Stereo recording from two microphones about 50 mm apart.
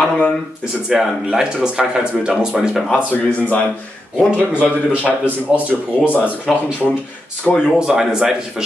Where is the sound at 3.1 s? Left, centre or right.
Left.